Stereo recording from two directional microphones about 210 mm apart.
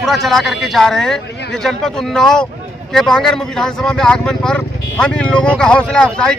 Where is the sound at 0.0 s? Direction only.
Centre (ahead or behind).